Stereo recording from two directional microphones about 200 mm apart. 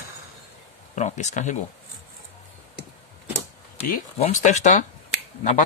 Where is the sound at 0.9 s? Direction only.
35° left (ahead or behind).